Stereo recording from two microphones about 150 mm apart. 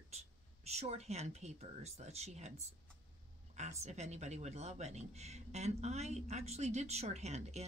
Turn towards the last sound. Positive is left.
turn(degrees=-45)  # may be behind; listen again after turning